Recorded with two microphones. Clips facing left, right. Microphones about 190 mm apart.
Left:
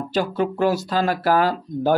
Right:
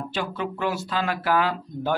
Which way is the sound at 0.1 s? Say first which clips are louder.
Left 10 dB; 40° left (ahead or behind).